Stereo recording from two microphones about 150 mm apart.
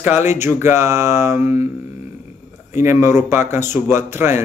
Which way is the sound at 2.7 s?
15° right (ahead or behind).